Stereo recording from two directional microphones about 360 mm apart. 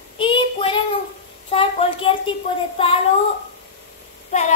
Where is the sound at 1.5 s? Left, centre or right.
Centre.